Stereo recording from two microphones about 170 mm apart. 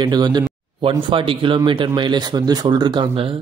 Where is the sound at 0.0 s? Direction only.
25° right (ahead or behind).